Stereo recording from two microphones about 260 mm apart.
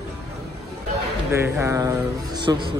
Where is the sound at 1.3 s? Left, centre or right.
Centre.